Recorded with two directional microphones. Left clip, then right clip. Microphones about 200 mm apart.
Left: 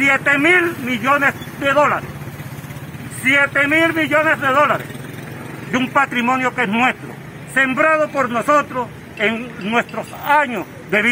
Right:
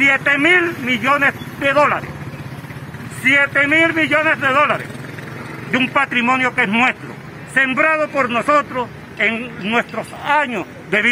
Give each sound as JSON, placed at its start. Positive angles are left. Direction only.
{"t": 0.0, "sound": "a man's voice", "side_deg": -5}
{"t": 3.3, "sound": "a man's voice", "side_deg": 0}
{"t": 6.1, "sound": "a man's voice", "side_deg": -5}